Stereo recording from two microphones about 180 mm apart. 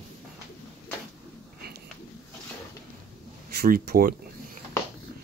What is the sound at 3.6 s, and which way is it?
Speech, 55° right (ahead or behind).